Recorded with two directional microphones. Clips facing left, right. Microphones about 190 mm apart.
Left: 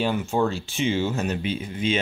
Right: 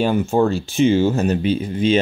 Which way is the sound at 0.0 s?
45° right (ahead or behind).